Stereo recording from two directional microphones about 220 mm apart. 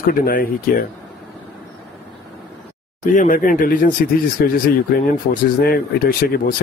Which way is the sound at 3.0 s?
35° left (ahead or behind).